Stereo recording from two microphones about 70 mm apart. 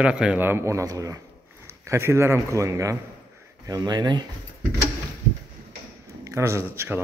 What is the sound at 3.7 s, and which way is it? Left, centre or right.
Speech, right.